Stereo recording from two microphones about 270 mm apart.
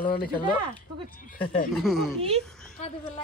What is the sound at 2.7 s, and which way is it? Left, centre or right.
Speech, left.